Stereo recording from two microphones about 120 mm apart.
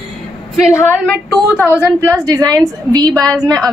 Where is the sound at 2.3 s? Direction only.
30° right (ahead or behind).